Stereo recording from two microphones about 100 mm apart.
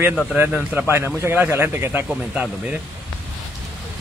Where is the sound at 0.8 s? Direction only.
25° right (ahead or behind).